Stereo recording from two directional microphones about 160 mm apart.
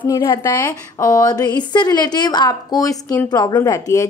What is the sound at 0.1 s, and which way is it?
A woman's voice, 25° left (ahead or behind).